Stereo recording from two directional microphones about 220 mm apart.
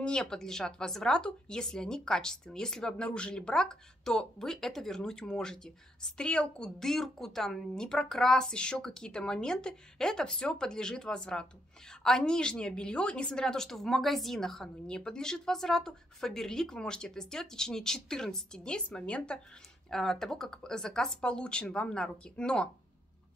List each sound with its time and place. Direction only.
0.0 s speech: 5° left (ahead or behind)